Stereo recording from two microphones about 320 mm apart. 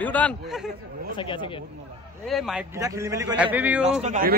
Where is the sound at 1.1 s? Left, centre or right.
Centre.